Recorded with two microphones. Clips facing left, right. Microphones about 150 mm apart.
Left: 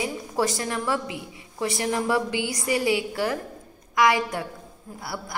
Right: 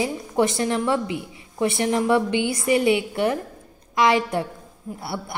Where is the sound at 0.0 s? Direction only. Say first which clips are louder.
Right 4 dB; 25° right (ahead or behind).